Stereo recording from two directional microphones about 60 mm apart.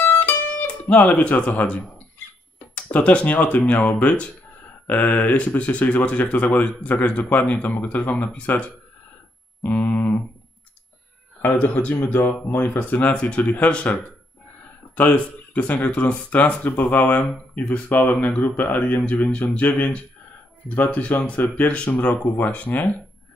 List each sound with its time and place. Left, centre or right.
0.0 s music: left
2.7 s speech: left
9.6 s a sound: left
11.5 s speech: left
11.9 s speech: left
15.0 s speech: left